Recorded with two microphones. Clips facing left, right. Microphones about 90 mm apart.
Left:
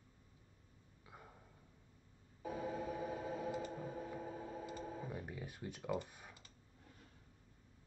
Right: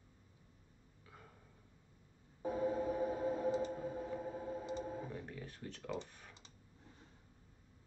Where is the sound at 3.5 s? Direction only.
25° right (ahead or behind).